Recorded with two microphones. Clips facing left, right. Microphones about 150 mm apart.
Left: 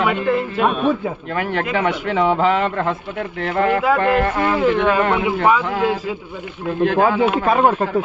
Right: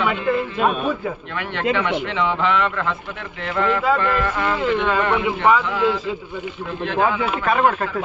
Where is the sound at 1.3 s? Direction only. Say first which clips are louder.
Left 2 dB; 45° left (ahead or behind).